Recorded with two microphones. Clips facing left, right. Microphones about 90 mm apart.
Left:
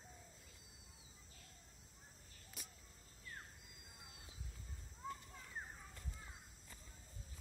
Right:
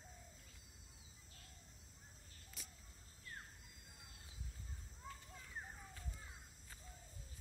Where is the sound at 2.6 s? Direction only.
15° left (ahead or behind).